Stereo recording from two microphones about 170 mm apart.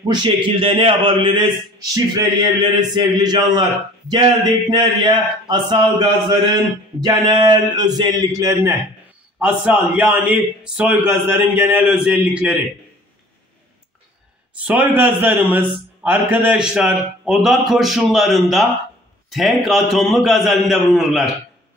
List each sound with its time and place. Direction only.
0.0 s a man's voice: 25° right (ahead or behind)
7.2 s a man's voice: 25° right (ahead or behind)
9.4 s a man's voice: 10° right (ahead or behind)
14.6 s a man's voice: 10° right (ahead or behind)